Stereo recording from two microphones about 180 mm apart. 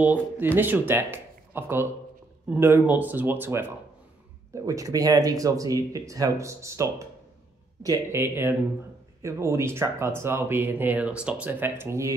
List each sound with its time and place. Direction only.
0.0 s speech: 10° right (ahead or behind)